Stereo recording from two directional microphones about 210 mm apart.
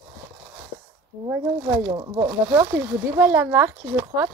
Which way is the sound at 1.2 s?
15° right (ahead or behind).